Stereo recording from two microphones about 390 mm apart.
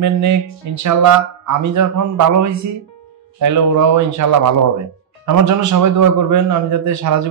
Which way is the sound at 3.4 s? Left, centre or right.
Right.